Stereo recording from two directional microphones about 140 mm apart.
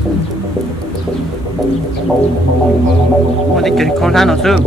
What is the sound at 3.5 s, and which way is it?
Speech, centre (ahead or behind).